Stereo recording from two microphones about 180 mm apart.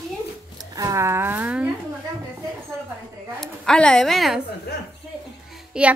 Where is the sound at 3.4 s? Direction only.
5° left (ahead or behind).